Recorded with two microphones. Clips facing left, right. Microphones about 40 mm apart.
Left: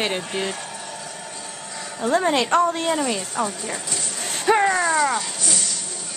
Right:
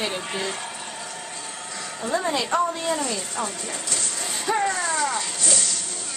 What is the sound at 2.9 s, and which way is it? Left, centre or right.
Speech, left.